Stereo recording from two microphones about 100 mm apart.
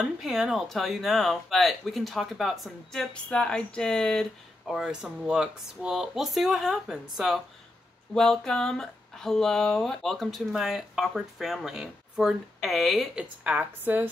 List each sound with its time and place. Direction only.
0.0 s speech: 5° right (ahead or behind)
4.7 s speech: 5° right (ahead or behind)